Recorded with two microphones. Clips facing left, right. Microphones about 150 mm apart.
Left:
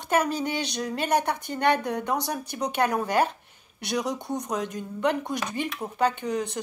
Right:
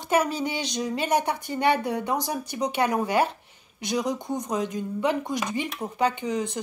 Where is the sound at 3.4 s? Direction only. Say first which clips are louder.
Right 3 dB; 55° left (ahead or behind).